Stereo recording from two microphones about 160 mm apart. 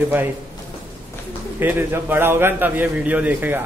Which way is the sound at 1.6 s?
15° right (ahead or behind).